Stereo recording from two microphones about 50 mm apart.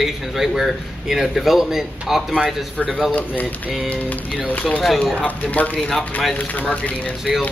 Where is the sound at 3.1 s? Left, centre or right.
Left.